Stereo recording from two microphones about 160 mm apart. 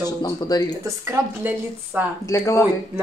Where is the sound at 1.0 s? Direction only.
15° right (ahead or behind).